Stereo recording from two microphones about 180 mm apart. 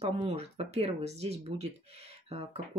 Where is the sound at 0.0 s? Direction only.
35° right (ahead or behind).